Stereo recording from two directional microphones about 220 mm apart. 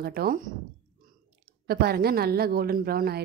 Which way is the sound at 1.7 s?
45° right (ahead or behind).